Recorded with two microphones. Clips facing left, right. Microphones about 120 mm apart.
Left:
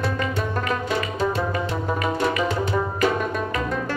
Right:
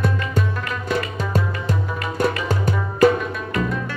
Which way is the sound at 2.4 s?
40° right (ahead or behind).